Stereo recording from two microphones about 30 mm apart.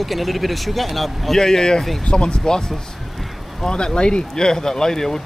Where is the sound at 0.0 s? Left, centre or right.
Centre.